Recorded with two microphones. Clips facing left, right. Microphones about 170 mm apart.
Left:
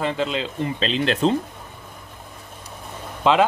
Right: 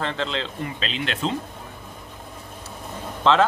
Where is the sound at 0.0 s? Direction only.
10° left (ahead or behind).